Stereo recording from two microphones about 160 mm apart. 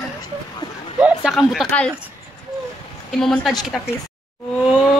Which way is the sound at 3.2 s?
Centre (ahead or behind).